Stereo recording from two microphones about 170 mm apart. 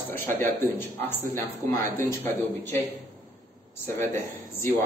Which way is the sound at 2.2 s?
10° left (ahead or behind).